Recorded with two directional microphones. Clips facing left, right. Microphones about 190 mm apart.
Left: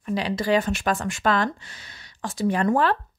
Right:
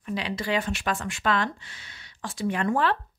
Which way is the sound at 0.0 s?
40° left (ahead or behind).